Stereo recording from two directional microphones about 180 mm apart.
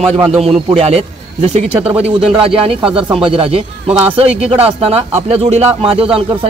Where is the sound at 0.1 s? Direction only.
30° right (ahead or behind).